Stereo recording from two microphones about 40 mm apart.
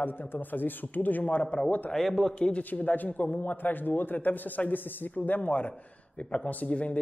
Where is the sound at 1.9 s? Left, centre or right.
Centre.